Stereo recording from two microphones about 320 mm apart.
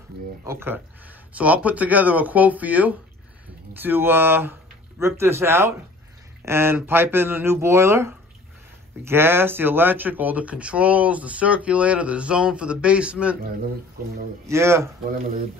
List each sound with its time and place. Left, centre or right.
0.5 s speech: centre
14.0 s speech: right
14.4 s speech: centre
15.0 s speech: right